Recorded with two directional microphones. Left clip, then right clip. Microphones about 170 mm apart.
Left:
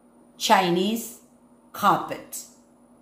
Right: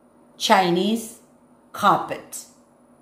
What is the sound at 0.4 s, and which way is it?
A woman's voice, 5° right (ahead or behind).